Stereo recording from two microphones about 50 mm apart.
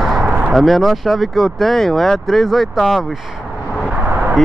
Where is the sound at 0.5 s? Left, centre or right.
Centre.